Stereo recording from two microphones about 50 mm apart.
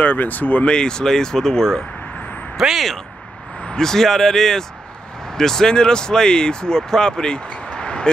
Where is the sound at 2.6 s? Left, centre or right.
Centre.